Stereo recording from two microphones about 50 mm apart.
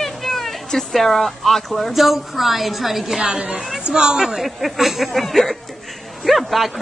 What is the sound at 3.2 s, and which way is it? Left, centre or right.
A woman's voice, centre.